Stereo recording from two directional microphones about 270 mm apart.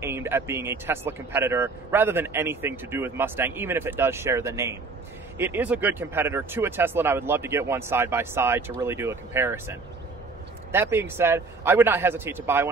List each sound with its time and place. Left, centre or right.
0.0 s a man's voice: centre